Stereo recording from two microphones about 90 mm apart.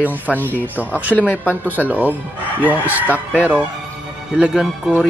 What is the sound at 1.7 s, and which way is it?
Speech, 20° right (ahead or behind).